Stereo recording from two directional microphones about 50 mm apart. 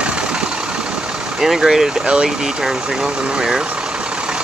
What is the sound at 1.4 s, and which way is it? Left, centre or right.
Speech, centre.